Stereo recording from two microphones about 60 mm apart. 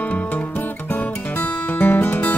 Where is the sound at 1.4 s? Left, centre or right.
Left.